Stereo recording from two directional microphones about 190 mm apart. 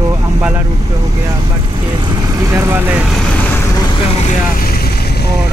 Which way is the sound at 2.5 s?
15° right (ahead or behind).